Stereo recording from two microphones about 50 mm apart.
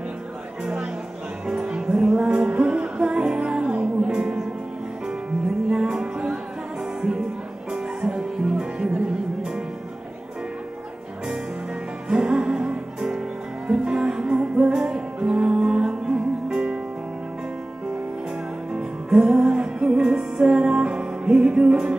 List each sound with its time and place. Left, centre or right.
1.5 s music: centre
5.7 s music: centre
7.7 s music: centre
12.1 s music: centre
18.7 s music: centre